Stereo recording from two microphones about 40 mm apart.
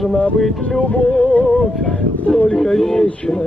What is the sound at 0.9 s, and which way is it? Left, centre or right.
Music, left.